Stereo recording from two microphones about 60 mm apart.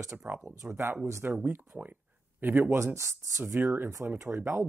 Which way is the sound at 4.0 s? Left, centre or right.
Right.